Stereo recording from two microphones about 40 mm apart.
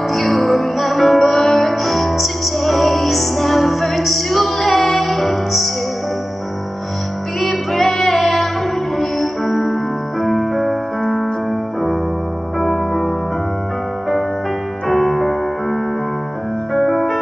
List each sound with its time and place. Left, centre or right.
0.1 s music: centre
7.3 s music: centre
12.5 s music: centre
14.9 s music: centre